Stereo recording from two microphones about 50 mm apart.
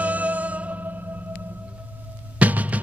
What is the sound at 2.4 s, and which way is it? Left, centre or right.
Music, right.